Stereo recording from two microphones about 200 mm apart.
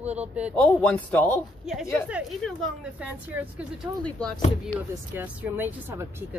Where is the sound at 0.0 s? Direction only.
35° right (ahead or behind).